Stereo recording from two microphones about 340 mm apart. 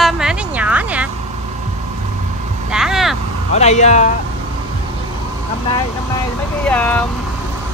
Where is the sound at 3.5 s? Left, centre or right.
Centre.